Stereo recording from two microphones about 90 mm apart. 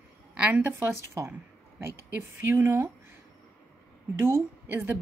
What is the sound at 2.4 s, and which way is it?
Speech, 25° right (ahead or behind).